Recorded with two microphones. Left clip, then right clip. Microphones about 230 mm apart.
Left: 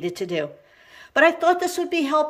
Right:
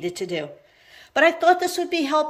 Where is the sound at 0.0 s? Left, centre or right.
Centre.